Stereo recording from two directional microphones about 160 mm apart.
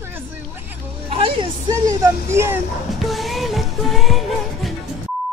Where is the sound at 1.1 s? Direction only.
35° right (ahead or behind).